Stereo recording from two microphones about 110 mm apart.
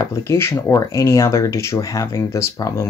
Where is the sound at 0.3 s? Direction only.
25° left (ahead or behind).